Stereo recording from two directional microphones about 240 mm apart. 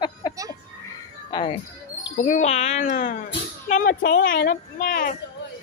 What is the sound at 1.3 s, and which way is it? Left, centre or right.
Speech, left.